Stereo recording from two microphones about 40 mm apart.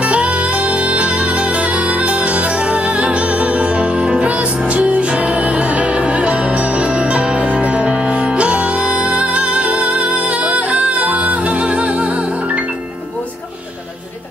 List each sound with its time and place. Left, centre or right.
0.0 s music: right